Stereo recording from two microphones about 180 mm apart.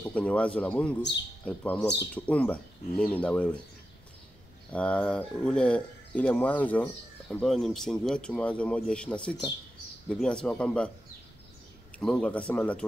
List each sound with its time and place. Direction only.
0.0 s speech: 5° left (ahead or behind)
4.7 s a man's voice: 5° left (ahead or behind)
12.0 s a man's voice: 5° left (ahead or behind)